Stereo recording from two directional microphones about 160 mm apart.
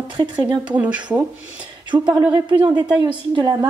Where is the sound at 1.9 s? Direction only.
25° right (ahead or behind).